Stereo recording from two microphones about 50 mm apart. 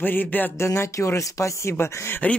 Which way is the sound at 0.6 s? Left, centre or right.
Left.